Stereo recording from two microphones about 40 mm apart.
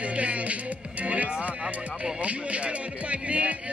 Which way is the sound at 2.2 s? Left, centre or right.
Right.